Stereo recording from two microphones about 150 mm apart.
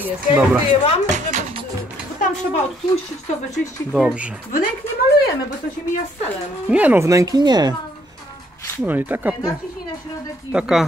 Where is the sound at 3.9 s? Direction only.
5° right (ahead or behind).